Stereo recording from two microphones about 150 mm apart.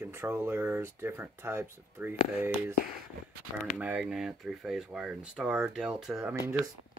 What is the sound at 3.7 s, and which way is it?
Speech, 10° right (ahead or behind).